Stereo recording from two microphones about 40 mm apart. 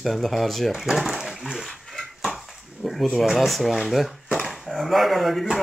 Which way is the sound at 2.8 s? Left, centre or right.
Centre.